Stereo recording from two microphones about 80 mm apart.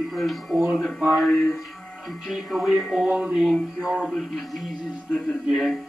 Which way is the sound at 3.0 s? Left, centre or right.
Centre.